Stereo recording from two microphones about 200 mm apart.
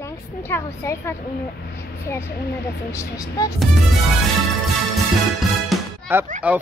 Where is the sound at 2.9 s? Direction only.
15° left (ahead or behind).